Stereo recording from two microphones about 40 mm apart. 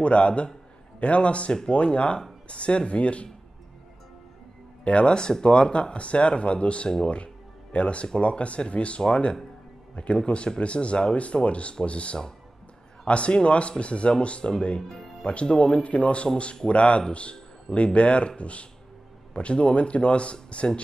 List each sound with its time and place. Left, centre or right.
0.0 s speech: left
4.8 s speech: left